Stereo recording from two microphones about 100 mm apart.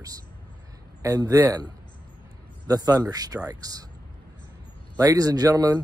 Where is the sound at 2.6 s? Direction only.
40° right (ahead or behind).